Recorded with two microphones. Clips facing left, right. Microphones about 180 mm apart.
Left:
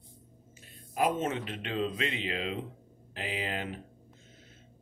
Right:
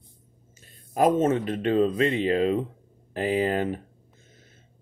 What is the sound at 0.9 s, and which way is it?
Speech, 45° right (ahead or behind).